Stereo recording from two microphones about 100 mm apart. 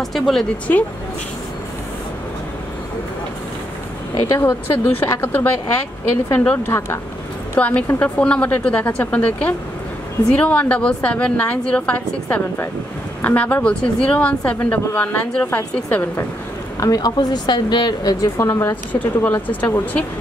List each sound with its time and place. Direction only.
0.0 s speech: centre (ahead or behind)
0.7 s speech: 20° left (ahead or behind)
4.2 s a woman's voice: 25° left (ahead or behind)
16.8 s a woman's voice: 40° left (ahead or behind)
18.9 s a woman's voice: 15° left (ahead or behind)